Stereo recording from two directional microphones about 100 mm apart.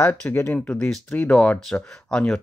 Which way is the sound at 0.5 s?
10° left (ahead or behind).